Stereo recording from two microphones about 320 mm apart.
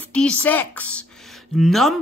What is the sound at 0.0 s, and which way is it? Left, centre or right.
Speech, centre.